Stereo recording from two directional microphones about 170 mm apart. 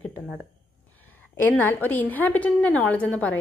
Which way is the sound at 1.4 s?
10° left (ahead or behind).